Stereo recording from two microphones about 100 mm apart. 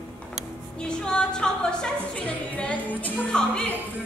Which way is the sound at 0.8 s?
10° left (ahead or behind).